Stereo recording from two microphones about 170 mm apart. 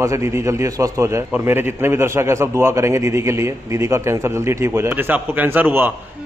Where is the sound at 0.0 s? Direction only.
15° right (ahead or behind).